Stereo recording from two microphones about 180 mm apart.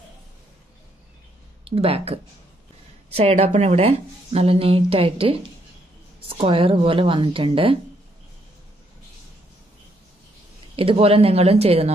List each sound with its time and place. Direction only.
1.6 s a woman's voice: 35° right (ahead or behind)
10.8 s a woman's voice: 30° right (ahead or behind)